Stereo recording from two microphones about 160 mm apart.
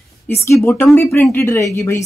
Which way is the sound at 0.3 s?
15° left (ahead or behind).